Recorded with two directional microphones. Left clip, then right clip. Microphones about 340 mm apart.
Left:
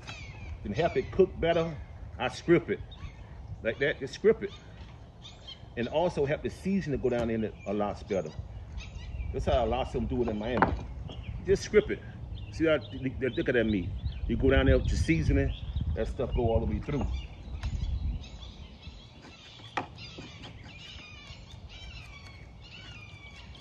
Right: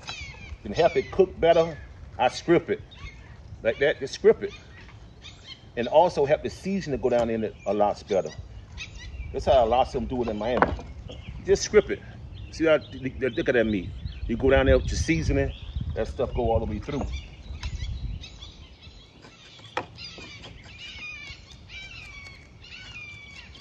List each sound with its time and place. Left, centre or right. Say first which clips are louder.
0.7 s speech: right 7 dB; centre
3.8 s speech: right 5 dB; centre
5.8 s speech: right 8 dB; centre
8.3 s a sound: right 5 dB; right
9.3 s speech: right 8 dB; centre